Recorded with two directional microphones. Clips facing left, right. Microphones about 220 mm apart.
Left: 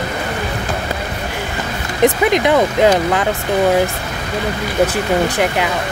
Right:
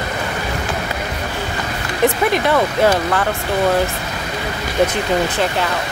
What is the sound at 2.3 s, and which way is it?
Speech, 20° left (ahead or behind).